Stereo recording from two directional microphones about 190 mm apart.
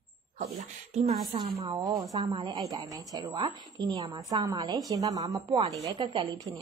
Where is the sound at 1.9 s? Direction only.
15° right (ahead or behind).